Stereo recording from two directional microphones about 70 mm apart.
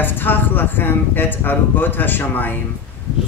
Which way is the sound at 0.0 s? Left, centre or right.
Left.